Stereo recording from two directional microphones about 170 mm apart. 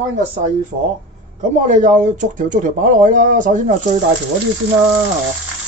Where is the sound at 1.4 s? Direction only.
50° right (ahead or behind).